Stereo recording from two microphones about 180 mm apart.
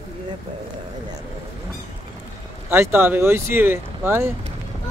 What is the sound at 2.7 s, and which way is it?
Speech, 15° right (ahead or behind).